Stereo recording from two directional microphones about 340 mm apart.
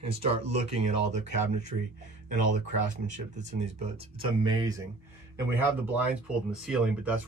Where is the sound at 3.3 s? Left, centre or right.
Centre.